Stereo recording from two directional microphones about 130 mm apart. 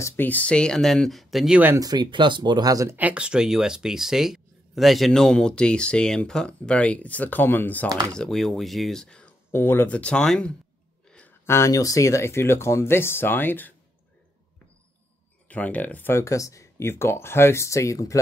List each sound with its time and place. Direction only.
0.0 s speech: 15° left (ahead or behind); by 1.6 s centre (ahead or behind)
1.8 s speech: 30° right (ahead or behind)
3.0 s speech: 10° right (ahead or behind); by 9.3 s 5° left (ahead or behind)
9.5 s speech: 20° left (ahead or behind)
11.1 s a sound: 10° left (ahead or behind)
11.4 s speech: 20° left (ahead or behind)
15.4 s speech: 10° left (ahead or behind)